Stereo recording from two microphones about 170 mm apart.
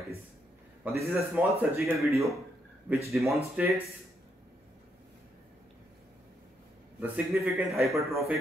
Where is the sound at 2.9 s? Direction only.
10° right (ahead or behind).